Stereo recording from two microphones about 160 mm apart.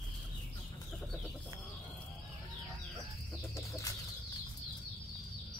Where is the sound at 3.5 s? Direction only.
20° left (ahead or behind).